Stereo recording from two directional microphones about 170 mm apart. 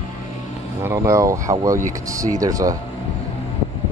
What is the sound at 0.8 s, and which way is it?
Speech, 15° right (ahead or behind).